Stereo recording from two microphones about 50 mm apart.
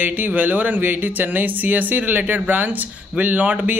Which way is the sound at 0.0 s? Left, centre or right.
Right.